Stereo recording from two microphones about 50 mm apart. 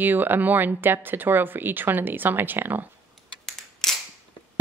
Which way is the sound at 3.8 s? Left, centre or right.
Centre.